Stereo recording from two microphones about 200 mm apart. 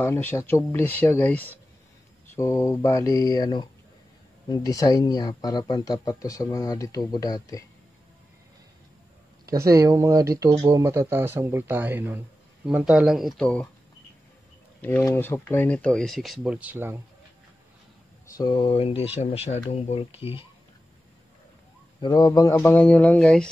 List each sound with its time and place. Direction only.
0.0 s speech: 10° left (ahead or behind)
9.5 s speech: 15° right (ahead or behind); by 13.7 s 5° left (ahead or behind)
14.8 s speech: 10° left (ahead or behind); by 17.0 s 10° right (ahead or behind)
18.3 s speech: 20° left (ahead or behind)
22.0 s speech: 20° left (ahead or behind); by 23.5 s 5° left (ahead or behind)